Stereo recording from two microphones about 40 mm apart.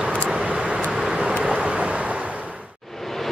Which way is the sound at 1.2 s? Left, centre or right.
Right.